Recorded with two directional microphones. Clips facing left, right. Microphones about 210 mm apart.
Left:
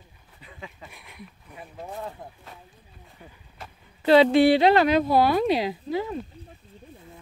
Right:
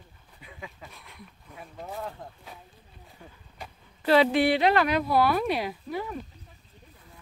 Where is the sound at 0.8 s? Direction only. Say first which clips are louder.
Left 3 dB; 15° left (ahead or behind).